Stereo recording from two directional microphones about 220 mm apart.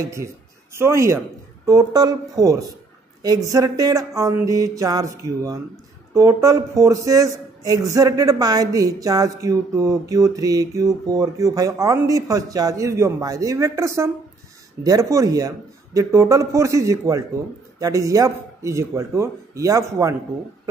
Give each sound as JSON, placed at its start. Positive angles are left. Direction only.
{"t": 0.0, "sound": "a man's voice", "side_deg": -15}